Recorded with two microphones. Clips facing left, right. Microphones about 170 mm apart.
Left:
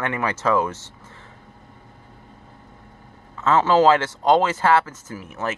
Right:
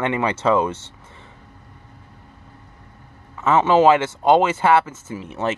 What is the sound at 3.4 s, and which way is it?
Speech, 15° right (ahead or behind).